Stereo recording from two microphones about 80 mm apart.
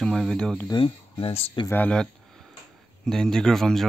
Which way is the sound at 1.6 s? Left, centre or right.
Left.